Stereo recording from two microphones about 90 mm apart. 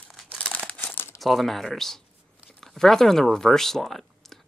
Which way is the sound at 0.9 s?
30° left (ahead or behind).